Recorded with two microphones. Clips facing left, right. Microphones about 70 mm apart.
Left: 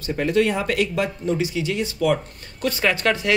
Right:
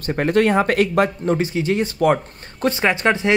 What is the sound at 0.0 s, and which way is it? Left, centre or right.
Speech, right.